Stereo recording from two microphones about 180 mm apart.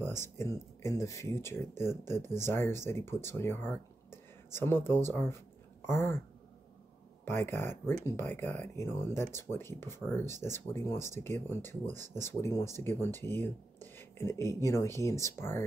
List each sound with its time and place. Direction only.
0.0 s speech: 15° left (ahead or behind)
7.2 s speech: 10° left (ahead or behind)